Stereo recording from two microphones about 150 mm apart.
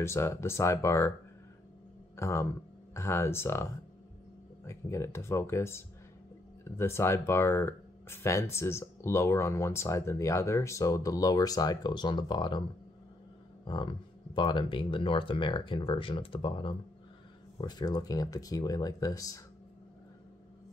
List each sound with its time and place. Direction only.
0.0 s speech: 20° left (ahead or behind)
2.1 s speech: 20° left (ahead or behind)
4.6 s speech: 20° left (ahead or behind)
13.7 s speech: 30° left (ahead or behind)